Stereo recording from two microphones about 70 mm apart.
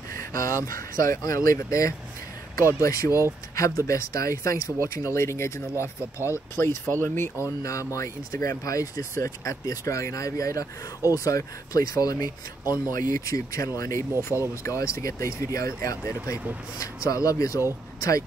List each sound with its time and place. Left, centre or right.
0.3 s speech: left
7.4 s speech: left